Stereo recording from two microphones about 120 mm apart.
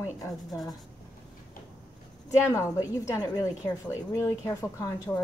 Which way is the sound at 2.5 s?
25° left (ahead or behind).